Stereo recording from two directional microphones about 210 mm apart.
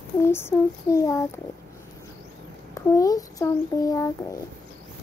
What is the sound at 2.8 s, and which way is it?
A child's voice, 15° left (ahead or behind).